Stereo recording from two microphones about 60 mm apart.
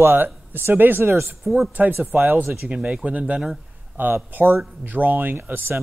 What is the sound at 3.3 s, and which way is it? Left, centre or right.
Speech, centre.